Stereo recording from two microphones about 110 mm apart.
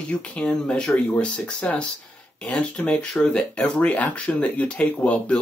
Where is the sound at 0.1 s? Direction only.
10° left (ahead or behind).